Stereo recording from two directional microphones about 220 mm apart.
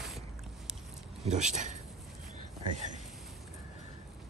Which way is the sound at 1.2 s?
30° right (ahead or behind).